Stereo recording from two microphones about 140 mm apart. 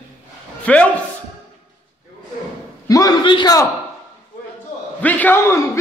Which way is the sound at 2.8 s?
25° left (ahead or behind).